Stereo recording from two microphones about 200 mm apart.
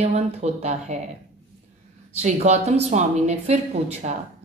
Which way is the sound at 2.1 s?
35° right (ahead or behind).